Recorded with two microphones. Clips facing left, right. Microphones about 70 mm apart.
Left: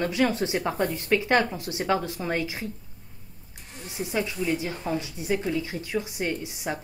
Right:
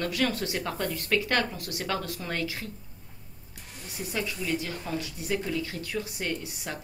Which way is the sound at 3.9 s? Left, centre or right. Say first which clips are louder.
Left 4 dB; left.